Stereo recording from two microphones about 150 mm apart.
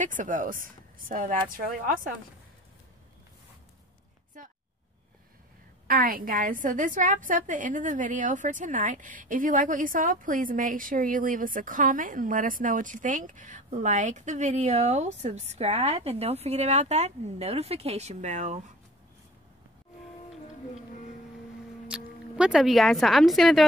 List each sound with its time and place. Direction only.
0.0 s a woman's voice: 60° right (ahead or behind)
5.9 s a woman's voice: 75° right (ahead or behind); by 18.7 s 50° right (ahead or behind)
21.8 s speech: 5° right (ahead or behind)